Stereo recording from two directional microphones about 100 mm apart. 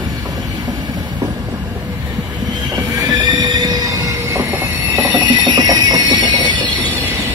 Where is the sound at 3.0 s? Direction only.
40° right (ahead or behind).